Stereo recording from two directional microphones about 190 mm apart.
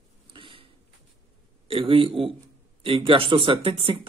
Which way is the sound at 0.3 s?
25° right (ahead or behind).